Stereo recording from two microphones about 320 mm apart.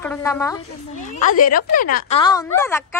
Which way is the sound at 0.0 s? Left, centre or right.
Centre.